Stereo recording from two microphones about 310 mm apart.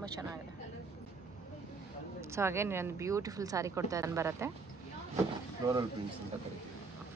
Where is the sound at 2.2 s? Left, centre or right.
Centre.